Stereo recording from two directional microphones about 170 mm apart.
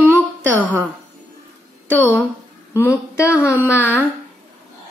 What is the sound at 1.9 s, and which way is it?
Speech, 10° left (ahead or behind).